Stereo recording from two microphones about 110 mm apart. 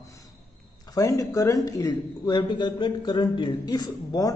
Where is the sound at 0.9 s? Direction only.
30° left (ahead or behind).